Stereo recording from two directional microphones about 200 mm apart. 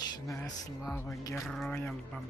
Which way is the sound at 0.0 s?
20° left (ahead or behind).